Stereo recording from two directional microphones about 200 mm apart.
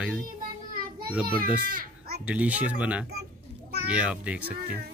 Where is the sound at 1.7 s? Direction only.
50° right (ahead or behind).